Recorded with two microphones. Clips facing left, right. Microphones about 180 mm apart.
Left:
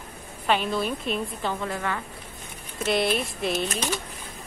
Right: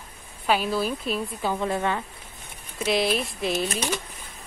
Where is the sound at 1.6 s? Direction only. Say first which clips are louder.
Right 4 dB; 20° right (ahead or behind).